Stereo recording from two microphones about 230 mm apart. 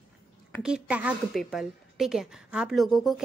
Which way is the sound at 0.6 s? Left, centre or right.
Centre.